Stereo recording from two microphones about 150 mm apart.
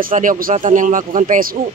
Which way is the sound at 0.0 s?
65° right (ahead or behind).